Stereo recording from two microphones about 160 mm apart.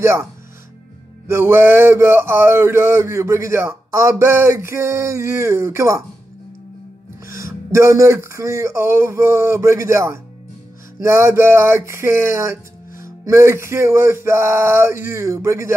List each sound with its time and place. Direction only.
0.0 s speech: 15° right (ahead or behind)
7.2 s speech: 20° right (ahead or behind)